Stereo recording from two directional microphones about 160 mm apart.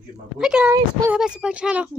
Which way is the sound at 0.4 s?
5° right (ahead or behind).